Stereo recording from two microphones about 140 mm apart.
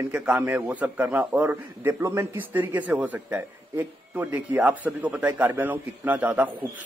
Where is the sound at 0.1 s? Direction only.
10° right (ahead or behind).